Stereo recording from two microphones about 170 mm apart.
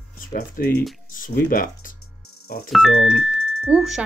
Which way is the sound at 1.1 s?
55° left (ahead or behind).